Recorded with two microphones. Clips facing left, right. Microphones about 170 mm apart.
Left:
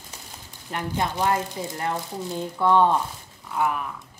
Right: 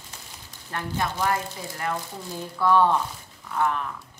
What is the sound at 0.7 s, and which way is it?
Speech, 20° left (ahead or behind).